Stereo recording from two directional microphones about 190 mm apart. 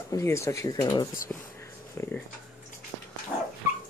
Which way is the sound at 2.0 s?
15° left (ahead or behind).